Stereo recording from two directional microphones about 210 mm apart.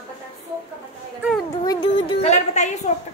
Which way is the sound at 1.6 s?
20° left (ahead or behind).